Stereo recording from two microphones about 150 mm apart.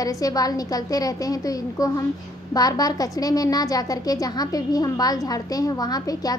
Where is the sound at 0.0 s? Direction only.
25° left (ahead or behind).